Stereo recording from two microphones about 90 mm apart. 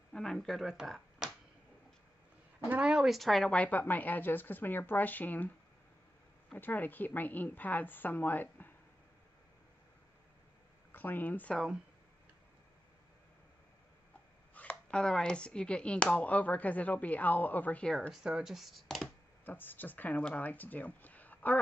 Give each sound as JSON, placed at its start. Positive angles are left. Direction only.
{"t": 0.1, "sound": "speech", "side_deg": 5}
{"t": 2.7, "sound": "speech", "side_deg": -10}
{"t": 3.5, "sound": "a woman's voice", "side_deg": 20}
{"t": 6.5, "sound": "a woman's voice", "side_deg": 20}
{"t": 10.9, "sound": "speech", "side_deg": 20}
{"t": 14.5, "sound": "speech", "side_deg": 15}
{"t": 18.1, "sound": "speech", "side_deg": -5}
{"t": 19.4, "sound": "a woman's voice", "side_deg": 20}